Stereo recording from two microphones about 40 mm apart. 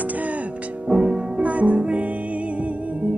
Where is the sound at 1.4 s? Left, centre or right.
Right.